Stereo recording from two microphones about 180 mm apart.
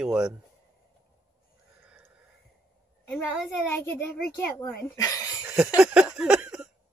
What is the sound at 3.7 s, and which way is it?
Speech, 10° left (ahead or behind).